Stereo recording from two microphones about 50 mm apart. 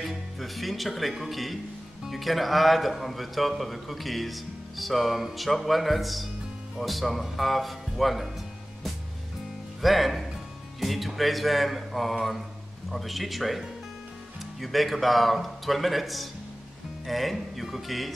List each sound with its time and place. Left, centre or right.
0.0 s speech: centre
9.8 s speech: centre